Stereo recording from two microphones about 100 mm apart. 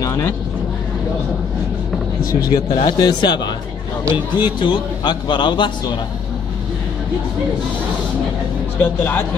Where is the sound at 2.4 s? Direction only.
50° left (ahead or behind).